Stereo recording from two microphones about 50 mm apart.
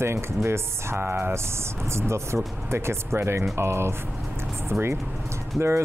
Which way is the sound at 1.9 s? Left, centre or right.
Right.